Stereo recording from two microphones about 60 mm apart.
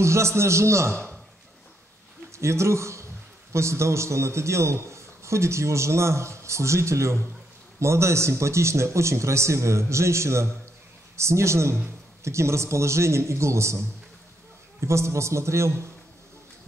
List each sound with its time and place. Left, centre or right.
0.0 s a man's voice: right
2.3 s a man's voice: right
14.8 s a man's voice: right